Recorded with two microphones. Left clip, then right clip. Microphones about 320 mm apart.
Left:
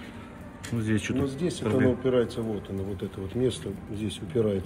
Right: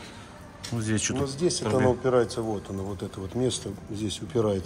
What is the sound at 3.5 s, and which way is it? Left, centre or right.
Speech, centre.